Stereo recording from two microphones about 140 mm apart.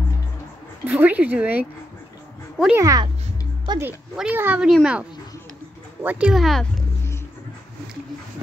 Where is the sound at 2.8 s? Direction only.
25° right (ahead or behind).